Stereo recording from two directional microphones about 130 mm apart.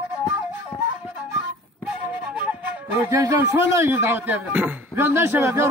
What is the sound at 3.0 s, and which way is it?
A man's voice, 25° right (ahead or behind).